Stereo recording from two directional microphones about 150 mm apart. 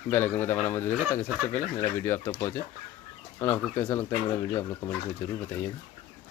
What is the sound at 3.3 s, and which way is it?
Speech, 10° left (ahead or behind).